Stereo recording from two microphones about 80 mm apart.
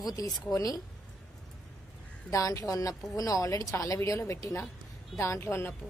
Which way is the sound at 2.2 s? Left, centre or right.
Left.